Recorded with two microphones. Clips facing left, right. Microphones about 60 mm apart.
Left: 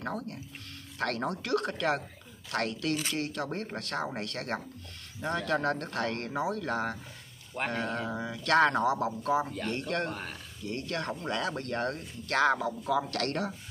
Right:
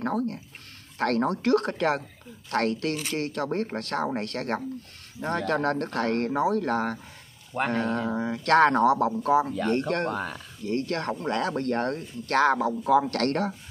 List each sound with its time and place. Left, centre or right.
0.0 s speech: right
7.5 s speech: right
8.2 s speech: right